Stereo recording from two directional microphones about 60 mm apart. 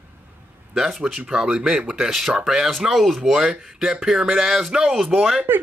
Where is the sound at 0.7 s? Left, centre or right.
Centre.